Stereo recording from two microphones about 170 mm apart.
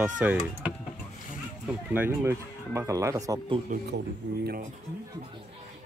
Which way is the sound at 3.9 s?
70° right (ahead or behind).